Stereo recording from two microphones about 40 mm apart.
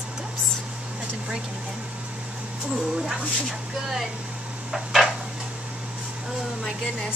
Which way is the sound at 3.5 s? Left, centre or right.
Right.